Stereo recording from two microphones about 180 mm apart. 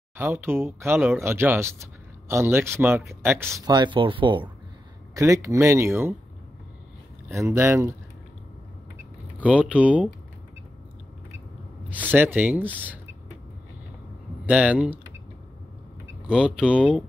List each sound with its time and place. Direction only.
0.2 s speech: 10° right (ahead or behind); by 4.5 s 25° right (ahead or behind)
5.1 s speech: 15° right (ahead or behind)
7.3 s speech: 15° right (ahead or behind)
9.4 s speech: 5° right (ahead or behind)
12.1 s speech: 10° right (ahead or behind)
14.4 s speech: 5° right (ahead or behind)
16.3 s speech: 5° right (ahead or behind)